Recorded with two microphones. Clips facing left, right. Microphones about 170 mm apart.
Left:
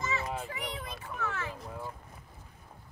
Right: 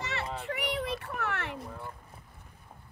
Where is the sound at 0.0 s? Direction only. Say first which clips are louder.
Left 1 dB; 70° right (ahead or behind).